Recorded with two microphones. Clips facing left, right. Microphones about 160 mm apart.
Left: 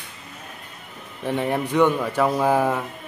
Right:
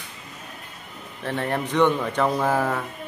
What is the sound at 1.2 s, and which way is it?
Speech, 15° left (ahead or behind).